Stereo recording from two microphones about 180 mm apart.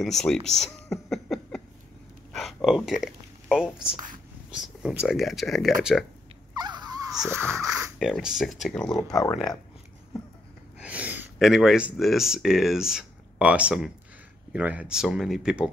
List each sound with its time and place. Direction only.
0.0 s a sound: centre (ahead or behind)
5.0 s speech: centre (ahead or behind)
6.5 s a sound: 25° right (ahead or behind)
7.2 s wheeze: 15° right (ahead or behind)
8.0 s speech: 5° right (ahead or behind)
9.1 s speech: 20° left (ahead or behind)
10.8 s speech: 5° right (ahead or behind)